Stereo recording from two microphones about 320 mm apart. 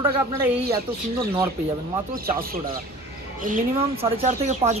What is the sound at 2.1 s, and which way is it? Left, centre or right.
Speech, right.